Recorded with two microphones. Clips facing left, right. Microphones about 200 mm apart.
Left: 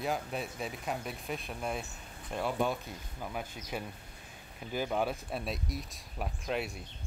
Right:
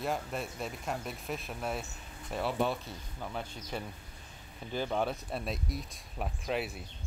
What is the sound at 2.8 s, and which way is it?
Speech, 10° left (ahead or behind).